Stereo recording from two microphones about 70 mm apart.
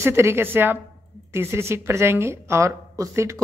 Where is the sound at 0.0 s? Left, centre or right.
Right.